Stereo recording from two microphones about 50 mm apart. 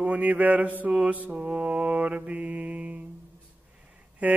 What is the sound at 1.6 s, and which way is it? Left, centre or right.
Music, right.